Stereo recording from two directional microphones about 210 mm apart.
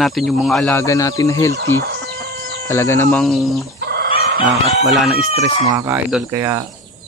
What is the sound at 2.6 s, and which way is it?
Speech, 15° left (ahead or behind).